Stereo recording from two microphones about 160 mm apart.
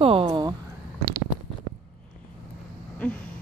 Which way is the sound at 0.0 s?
35° right (ahead or behind).